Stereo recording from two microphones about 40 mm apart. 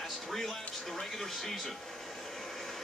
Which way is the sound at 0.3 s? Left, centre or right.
Centre.